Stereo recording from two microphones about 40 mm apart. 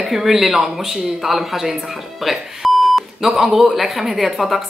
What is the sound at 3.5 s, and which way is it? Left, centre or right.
A woman's voice, centre.